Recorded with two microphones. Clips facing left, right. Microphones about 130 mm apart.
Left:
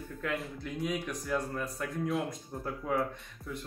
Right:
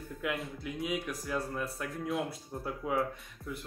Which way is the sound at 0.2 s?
5° right (ahead or behind).